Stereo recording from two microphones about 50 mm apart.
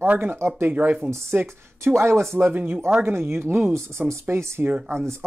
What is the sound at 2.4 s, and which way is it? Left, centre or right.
Speech, right.